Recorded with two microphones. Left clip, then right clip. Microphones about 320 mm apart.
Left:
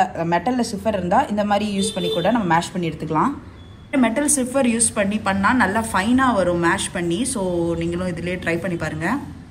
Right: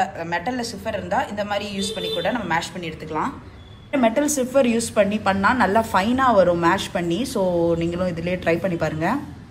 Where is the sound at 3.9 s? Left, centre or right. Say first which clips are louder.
Even; centre.